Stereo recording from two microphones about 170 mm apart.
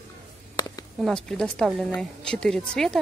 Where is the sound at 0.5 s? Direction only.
20° left (ahead or behind).